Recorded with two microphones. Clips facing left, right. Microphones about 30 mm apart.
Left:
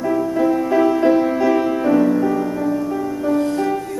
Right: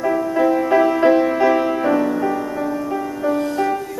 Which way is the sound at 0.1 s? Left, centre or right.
Centre.